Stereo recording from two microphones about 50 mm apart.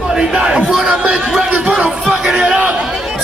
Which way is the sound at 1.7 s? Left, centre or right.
Centre.